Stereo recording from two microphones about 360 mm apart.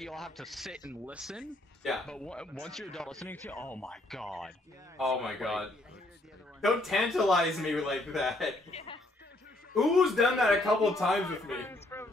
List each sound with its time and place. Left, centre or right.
0.0 s a man's voice: centre
8.7 s speech: centre
9.8 s a man's voice: centre